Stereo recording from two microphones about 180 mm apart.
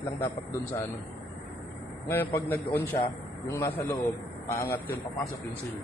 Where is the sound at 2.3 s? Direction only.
10° left (ahead or behind).